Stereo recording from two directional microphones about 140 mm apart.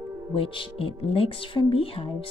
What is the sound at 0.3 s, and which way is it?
A woman's voice, 40° left (ahead or behind).